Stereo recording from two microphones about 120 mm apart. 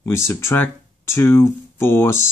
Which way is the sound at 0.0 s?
20° left (ahead or behind).